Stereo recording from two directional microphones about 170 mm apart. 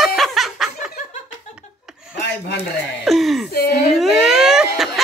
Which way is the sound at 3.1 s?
Centre (ahead or behind).